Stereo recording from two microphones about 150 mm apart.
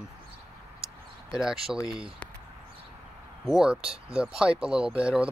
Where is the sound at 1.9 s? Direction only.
5° right (ahead or behind).